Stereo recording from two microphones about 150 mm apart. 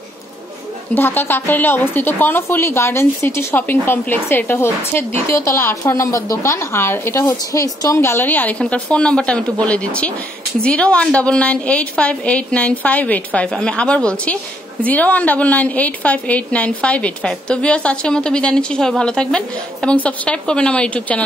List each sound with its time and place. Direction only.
0.9 s a woman's voice: 15° left (ahead or behind)